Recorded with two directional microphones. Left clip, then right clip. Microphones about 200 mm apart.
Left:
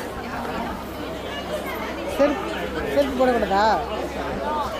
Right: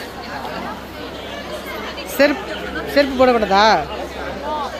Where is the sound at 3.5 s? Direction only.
50° right (ahead or behind).